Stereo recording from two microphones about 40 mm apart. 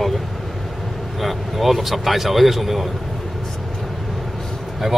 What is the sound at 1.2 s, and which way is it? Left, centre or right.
Speech, centre.